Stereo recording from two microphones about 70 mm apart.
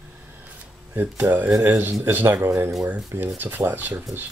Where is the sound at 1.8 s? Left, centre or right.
Right.